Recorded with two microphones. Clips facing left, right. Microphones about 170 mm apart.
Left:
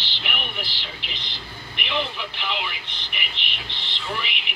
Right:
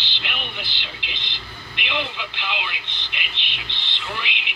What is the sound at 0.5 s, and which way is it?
Speech, 20° right (ahead or behind).